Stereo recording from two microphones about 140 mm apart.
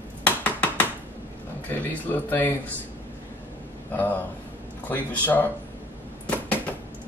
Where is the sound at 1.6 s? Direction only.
10° left (ahead or behind).